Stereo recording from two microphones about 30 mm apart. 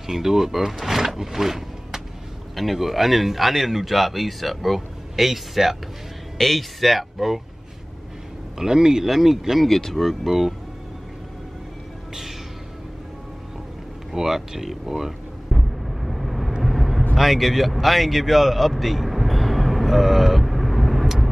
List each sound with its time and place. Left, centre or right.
0.0 s speech: centre
6.3 s speech: centre
8.5 s speech: right
9.0 s speech: centre
9.7 s speech: centre
9.9 s speech: centre
14.1 s a sound: centre
16.6 s vehicle: centre
17.1 s a sound: centre